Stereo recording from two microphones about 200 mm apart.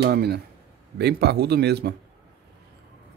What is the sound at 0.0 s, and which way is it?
Speech, 55° right (ahead or behind).